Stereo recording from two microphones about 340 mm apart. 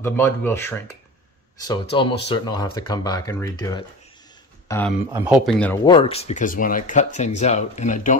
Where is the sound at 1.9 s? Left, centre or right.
Centre.